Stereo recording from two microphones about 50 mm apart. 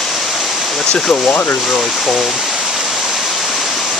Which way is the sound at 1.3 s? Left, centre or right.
Left.